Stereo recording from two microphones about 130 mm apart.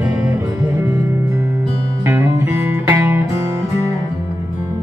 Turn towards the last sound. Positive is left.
turn(degrees=-15)  # may be behind; listen again after turning